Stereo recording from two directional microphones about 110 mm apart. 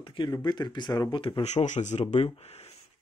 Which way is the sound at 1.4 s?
90° left.